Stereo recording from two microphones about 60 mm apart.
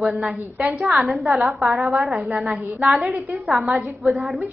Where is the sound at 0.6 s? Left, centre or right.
Centre.